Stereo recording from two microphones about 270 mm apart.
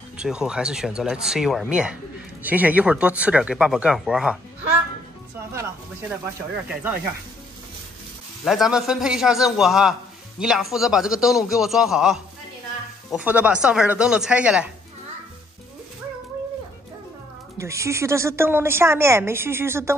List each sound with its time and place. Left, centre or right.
0.2 s speech: centre
5.5 s a woman's voice: centre
8.5 s speech: centre
17.6 s a woman's voice: centre